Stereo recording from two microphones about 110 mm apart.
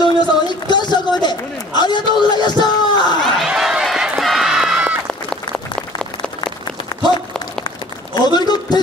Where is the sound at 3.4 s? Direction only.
5° right (ahead or behind).